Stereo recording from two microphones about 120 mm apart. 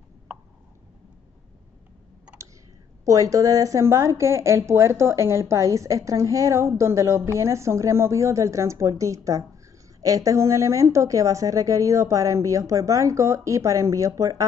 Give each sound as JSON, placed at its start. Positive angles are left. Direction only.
{"t": 3.1, "sound": "a woman's voice", "side_deg": -30}